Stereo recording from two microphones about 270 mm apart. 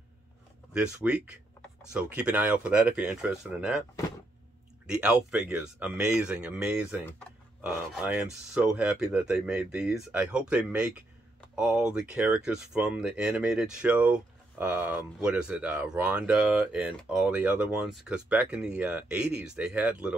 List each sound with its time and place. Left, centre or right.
0.7 s speech: centre
4.8 s speech: centre